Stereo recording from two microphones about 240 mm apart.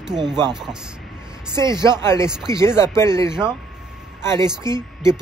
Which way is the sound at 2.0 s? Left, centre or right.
Centre.